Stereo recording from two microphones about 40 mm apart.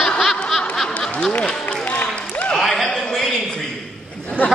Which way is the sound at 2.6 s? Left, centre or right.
Centre.